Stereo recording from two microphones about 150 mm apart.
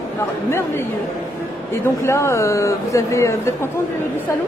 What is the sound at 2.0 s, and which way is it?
Speech, 20° left (ahead or behind).